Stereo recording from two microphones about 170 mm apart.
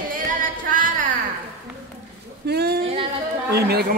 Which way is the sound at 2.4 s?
70° right (ahead or behind).